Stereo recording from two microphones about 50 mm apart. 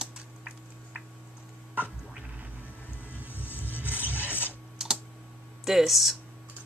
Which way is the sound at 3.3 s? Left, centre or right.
Left.